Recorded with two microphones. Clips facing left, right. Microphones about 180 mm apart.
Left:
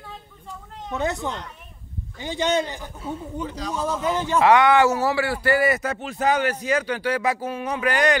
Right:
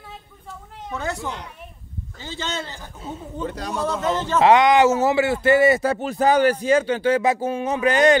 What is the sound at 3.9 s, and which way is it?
Speech, 10° left (ahead or behind).